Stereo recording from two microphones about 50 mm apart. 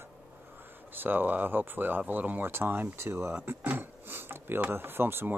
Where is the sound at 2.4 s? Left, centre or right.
Right.